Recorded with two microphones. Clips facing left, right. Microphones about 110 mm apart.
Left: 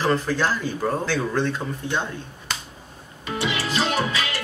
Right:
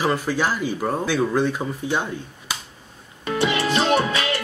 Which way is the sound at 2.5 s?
5° right (ahead or behind).